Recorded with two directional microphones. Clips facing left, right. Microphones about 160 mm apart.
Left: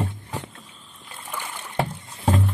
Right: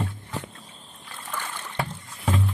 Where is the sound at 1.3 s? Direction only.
15° left (ahead or behind).